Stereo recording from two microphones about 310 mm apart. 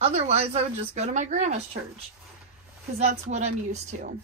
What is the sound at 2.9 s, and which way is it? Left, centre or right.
Speech, right.